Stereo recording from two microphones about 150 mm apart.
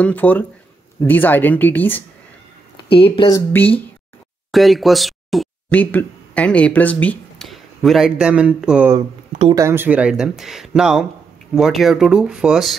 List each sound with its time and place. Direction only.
0.0 s speech: 10° left (ahead or behind)
3.0 s speech: 35° left (ahead or behind)
3.3 s speech: 15° left (ahead or behind)
4.5 s speech: centre (ahead or behind)
5.7 s speech: 10° left (ahead or behind)